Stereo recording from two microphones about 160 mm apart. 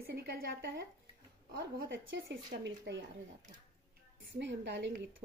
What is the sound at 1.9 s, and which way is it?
A woman's voice, 90° right.